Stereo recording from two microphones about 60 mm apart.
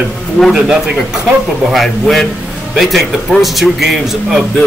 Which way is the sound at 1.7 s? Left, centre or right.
Centre.